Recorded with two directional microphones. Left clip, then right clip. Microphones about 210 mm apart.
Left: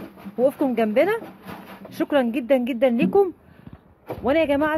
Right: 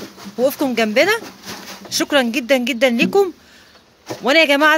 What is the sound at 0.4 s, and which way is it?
Speech, 5° right (ahead or behind).